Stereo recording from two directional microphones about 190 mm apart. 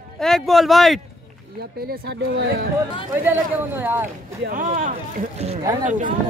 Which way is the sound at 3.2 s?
10° right (ahead or behind).